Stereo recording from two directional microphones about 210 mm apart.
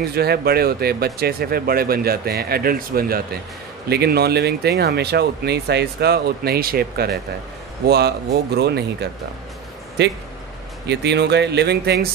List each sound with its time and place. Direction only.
0.1 s speech: 50° right (ahead or behind)